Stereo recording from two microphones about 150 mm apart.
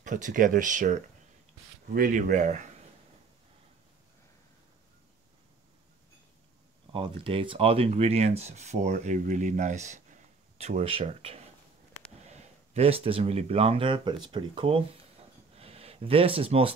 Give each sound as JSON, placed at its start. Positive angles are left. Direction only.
{"t": 0.0, "sound": "speech", "side_deg": -55}
{"t": 2.0, "sound": "speech", "side_deg": -65}
{"t": 6.9, "sound": "speech", "side_deg": -35}
{"t": 15.5, "sound": "a sound", "side_deg": -40}